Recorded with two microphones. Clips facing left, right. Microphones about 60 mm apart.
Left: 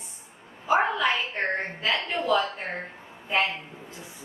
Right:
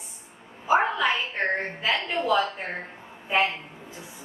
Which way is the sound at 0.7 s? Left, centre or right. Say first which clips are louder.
Right 1 dB; centre.